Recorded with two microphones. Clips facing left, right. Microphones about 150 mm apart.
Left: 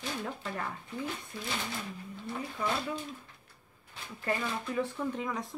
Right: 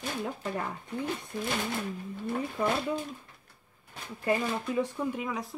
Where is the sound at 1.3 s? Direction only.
50° right (ahead or behind).